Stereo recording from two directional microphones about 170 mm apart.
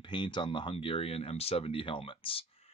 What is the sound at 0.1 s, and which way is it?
Speech, 30° left (ahead or behind).